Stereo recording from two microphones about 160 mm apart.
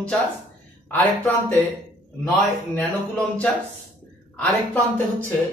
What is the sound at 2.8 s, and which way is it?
Speech, 10° left (ahead or behind).